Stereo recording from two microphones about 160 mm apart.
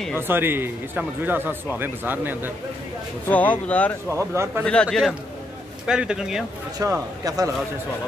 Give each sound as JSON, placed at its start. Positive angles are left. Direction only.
{"t": 0.3, "sound": "speech", "side_deg": -15}
{"t": 3.3, "sound": "speech", "side_deg": 10}
{"t": 4.1, "sound": "speech", "side_deg": -15}
{"t": 4.8, "sound": "speech", "side_deg": 0}
{"t": 6.8, "sound": "a man's voice", "side_deg": -20}